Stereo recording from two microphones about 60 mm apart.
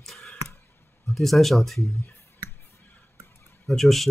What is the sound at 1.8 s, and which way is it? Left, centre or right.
Speech, left.